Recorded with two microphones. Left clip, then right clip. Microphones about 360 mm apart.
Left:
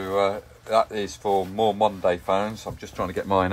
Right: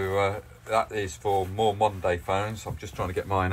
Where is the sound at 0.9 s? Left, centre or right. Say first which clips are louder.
Left 3 dB; centre.